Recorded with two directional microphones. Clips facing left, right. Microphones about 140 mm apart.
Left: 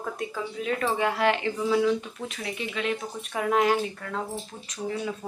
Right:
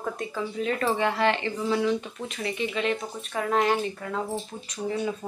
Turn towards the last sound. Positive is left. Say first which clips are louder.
# right 2 dB
turn(degrees=-5)  # may be behind; listen again after turning